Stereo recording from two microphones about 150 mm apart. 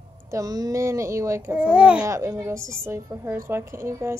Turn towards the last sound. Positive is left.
turn(degrees=-20)  # may be behind; listen again after turning